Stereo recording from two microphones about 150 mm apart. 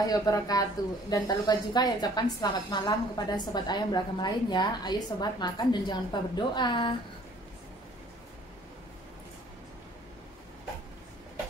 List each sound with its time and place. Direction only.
0.0 s a woman's voice: 25° left (ahead or behind)